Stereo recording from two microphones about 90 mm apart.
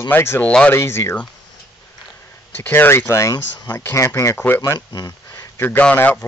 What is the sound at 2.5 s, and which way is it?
Speech, 25° left (ahead or behind).